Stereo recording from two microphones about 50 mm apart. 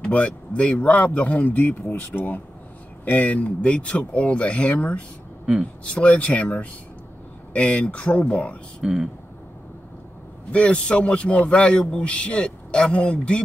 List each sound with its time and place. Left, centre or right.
0.1 s speech: left
8.8 s speech: centre
10.5 s speech: left